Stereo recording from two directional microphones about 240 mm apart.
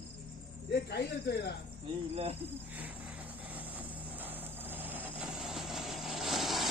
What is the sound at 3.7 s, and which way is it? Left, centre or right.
Vehicle, centre.